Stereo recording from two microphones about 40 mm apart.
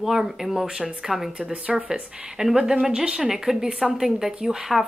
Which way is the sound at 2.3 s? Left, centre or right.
Centre.